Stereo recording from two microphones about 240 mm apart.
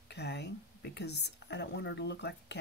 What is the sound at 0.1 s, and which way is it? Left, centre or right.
A woman's voice, left.